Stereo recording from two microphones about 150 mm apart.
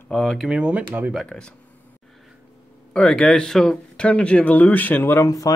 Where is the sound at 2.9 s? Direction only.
5° left (ahead or behind).